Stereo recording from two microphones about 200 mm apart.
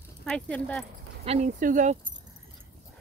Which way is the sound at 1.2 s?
35° right (ahead or behind).